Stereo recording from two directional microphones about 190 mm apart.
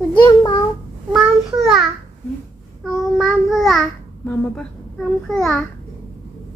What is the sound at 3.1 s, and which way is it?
Speech, centre (ahead or behind).